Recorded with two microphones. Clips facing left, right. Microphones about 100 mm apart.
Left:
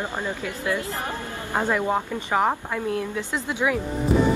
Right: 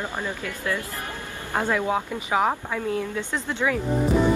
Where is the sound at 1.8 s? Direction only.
5° right (ahead or behind).